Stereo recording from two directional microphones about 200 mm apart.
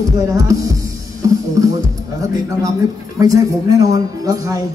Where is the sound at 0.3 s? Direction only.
15° right (ahead or behind).